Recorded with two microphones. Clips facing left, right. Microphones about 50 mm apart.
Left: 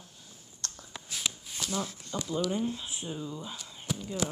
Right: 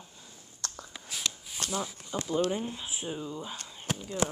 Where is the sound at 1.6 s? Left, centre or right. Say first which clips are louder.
Right 1 dB; right.